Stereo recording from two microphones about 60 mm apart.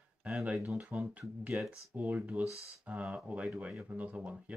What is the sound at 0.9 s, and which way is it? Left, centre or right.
Speech, right.